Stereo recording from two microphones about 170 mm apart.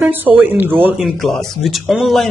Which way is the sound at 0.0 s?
10° right (ahead or behind).